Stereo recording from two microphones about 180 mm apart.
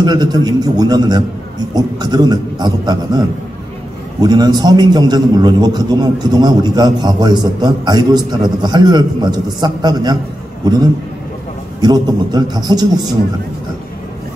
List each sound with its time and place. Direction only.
0.0 s a man's voice: 25° right (ahead or behind)
4.2 s a man's voice: 20° right (ahead or behind)